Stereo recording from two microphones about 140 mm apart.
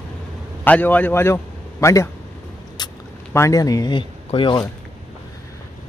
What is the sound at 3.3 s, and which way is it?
A man's voice, 20° left (ahead or behind).